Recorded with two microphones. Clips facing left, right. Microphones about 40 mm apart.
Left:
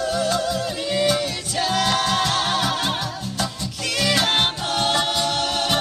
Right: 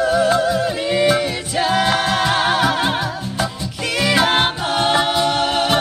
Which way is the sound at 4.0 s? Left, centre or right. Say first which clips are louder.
Right 4 dB; centre.